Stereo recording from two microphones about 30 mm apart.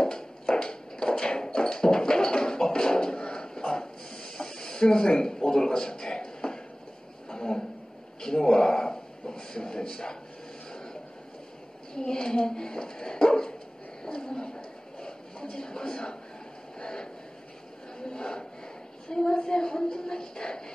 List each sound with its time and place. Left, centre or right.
0.0 s a sound: left
10.7 s vehicle: left
11.9 s speech: left